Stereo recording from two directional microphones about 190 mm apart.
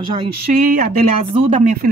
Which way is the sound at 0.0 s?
25° right (ahead or behind).